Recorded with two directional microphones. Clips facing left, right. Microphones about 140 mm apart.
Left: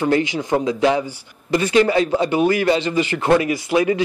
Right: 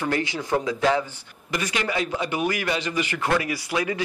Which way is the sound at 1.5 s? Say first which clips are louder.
Left 11 dB; 30° left (ahead or behind).